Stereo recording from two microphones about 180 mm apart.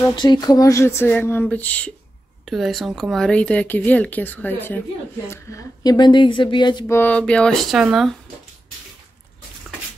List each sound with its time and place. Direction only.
0.1 s speech: 25° left (ahead or behind)
7.0 s speech: 5° left (ahead or behind)